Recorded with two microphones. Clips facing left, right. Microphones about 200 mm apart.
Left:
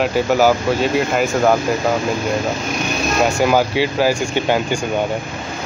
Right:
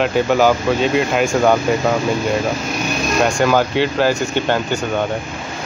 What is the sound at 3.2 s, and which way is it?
Speech, 5° left (ahead or behind).